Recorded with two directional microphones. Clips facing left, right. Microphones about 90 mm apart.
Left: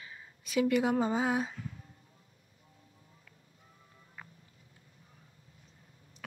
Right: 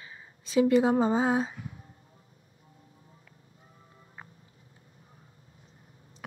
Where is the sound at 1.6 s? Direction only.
25° right (ahead or behind).